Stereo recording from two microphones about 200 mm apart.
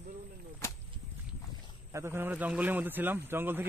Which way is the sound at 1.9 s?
15° right (ahead or behind).